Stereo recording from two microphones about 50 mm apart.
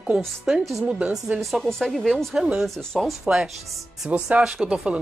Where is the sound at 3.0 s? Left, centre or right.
Centre.